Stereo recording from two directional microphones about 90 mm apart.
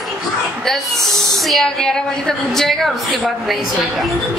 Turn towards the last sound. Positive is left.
turn(degrees=0)  # may be behind; listen again after turning